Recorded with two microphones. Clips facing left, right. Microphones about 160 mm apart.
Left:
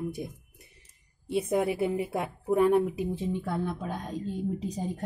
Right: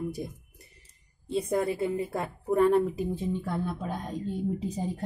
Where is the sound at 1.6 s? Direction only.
15° left (ahead or behind).